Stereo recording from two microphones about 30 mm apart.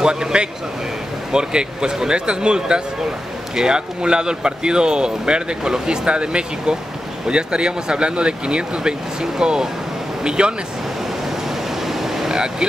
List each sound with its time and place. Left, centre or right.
0.0 s speech: right
11.8 s waves: centre